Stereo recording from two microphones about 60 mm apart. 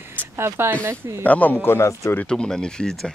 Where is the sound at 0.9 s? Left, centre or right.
Right.